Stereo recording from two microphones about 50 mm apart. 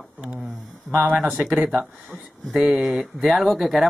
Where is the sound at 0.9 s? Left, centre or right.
Right.